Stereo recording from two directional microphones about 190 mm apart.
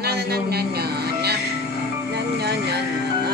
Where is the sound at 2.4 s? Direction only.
60° right (ahead or behind).